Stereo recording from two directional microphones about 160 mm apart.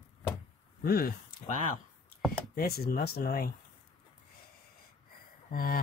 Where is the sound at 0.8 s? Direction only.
70° left (ahead or behind).